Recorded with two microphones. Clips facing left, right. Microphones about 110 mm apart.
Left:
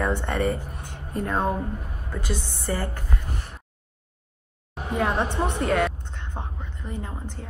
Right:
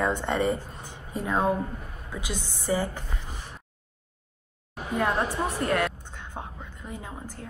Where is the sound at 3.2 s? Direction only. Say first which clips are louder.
Left 4 dB; 55° left (ahead or behind).